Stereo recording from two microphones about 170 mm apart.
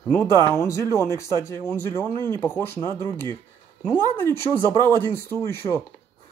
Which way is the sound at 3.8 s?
15° left (ahead or behind).